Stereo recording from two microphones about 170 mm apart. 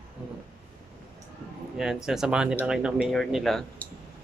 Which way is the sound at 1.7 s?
5° right (ahead or behind).